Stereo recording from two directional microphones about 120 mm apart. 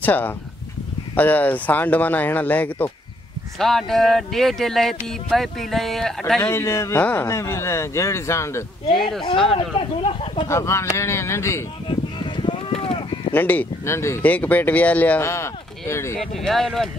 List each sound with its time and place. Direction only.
0.0 s speech: 15° left (ahead or behind)
3.5 s speech: centre (ahead or behind)
6.4 s speech: 25° left (ahead or behind)
9.8 s speech: 50° left (ahead or behind)
10.5 s speech: 25° left (ahead or behind)
11.9 s a sound: 45° left (ahead or behind)
13.3 s speech: 15° left (ahead or behind)
15.2 s speech: 25° left (ahead or behind)
16.2 s speech: centre (ahead or behind)